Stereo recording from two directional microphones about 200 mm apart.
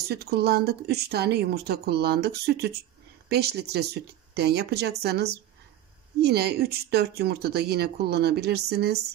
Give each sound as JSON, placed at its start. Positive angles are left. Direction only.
{"t": 0.1, "sound": "speech", "side_deg": -55}